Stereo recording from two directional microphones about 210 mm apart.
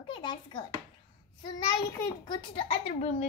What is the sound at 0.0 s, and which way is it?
A child's voice, 25° left (ahead or behind).